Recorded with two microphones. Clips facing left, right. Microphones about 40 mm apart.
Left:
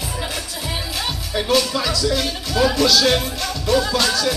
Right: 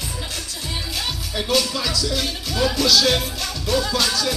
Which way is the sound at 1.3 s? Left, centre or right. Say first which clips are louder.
Left 3 dB; centre.